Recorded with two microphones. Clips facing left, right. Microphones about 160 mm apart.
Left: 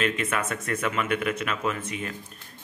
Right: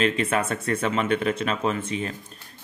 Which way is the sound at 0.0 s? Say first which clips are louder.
Right 4 dB; 30° right (ahead or behind).